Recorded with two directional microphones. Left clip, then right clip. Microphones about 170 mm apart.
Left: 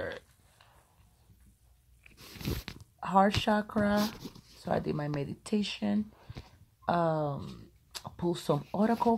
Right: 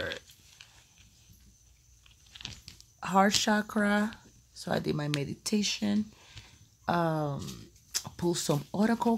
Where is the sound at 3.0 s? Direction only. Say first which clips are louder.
Right 1 dB; 30° right (ahead or behind).